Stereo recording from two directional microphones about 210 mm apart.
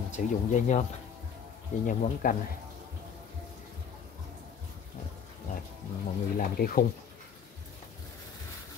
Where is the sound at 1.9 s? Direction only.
40° left (ahead or behind).